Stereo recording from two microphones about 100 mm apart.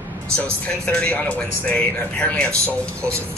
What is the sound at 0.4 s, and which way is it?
Speech, 15° left (ahead or behind).